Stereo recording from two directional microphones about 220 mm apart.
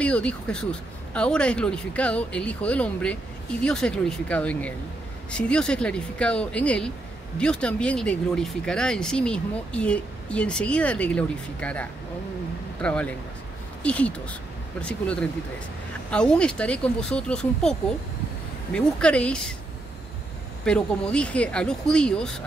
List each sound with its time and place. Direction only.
0.0 s speech: 5° left (ahead or behind)
20.6 s speech: 5° left (ahead or behind)